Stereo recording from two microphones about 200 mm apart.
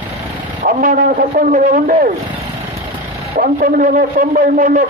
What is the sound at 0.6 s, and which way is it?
A man's voice, 45° right (ahead or behind).